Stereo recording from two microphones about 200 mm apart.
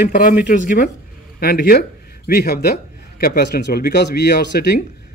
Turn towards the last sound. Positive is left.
turn(degrees=55)  # may be behind; listen again after turning